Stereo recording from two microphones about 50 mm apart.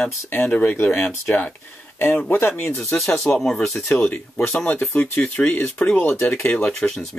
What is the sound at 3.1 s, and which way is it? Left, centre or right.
Speech, left.